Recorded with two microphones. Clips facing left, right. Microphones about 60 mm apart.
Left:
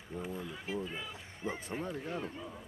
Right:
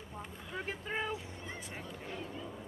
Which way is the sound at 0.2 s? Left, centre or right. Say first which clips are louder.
Left 7 dB; centre.